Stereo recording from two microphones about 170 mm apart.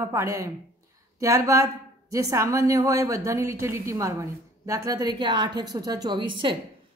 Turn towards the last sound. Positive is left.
turn(degrees=-30)  # may be behind; listen again after turning